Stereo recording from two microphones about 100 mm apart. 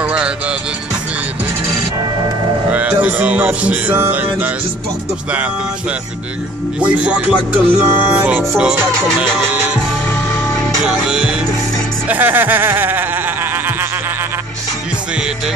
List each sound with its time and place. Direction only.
0.0 s music: 10° right (ahead or behind)
2.7 s music: 15° right (ahead or behind)
11.1 s music: 10° right (ahead or behind)
12.1 s a sound: 20° right (ahead or behind)